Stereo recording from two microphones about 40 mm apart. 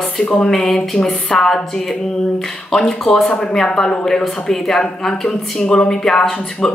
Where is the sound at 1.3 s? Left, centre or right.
Centre.